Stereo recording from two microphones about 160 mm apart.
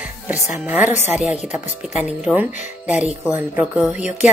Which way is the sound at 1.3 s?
5° right (ahead or behind).